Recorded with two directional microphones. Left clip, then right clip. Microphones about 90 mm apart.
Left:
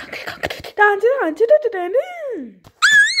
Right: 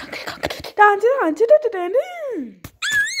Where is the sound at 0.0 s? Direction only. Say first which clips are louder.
Left 1 dB; 40° right (ahead or behind); by 2.3 s 20° right (ahead or behind).